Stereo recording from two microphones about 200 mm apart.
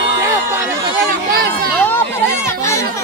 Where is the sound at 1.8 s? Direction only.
10° left (ahead or behind).